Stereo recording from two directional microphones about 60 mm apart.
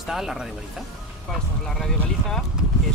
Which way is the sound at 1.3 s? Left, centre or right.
Centre.